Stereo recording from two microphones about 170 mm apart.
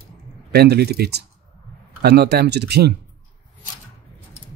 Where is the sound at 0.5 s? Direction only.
70° right (ahead or behind).